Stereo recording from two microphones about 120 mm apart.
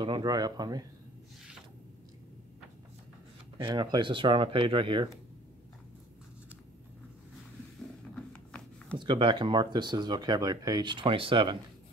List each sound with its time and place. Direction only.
0.0 s speech: 35° right (ahead or behind)
3.5 s speech: 40° right (ahead or behind)
8.3 s a sound: 10° left (ahead or behind)
8.9 s speech: 40° right (ahead or behind)